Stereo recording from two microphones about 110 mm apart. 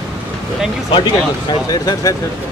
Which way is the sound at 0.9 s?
45° left (ahead or behind).